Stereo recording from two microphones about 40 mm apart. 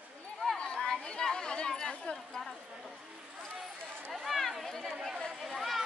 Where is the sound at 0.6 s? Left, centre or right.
Left.